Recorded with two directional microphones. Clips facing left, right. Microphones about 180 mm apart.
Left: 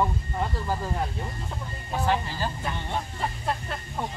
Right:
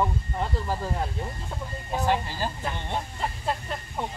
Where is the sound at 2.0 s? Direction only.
15° right (ahead or behind).